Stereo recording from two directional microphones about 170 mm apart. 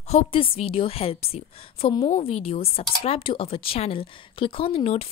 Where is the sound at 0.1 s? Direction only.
35° left (ahead or behind).